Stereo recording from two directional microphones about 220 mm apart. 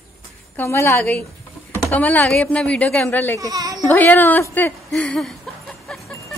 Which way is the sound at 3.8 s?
10° left (ahead or behind).